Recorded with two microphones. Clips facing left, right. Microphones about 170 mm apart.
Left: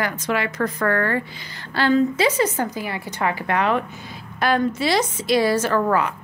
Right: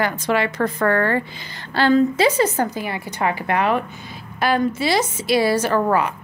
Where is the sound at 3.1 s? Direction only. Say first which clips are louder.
Right 1 dB; 20° right (ahead or behind).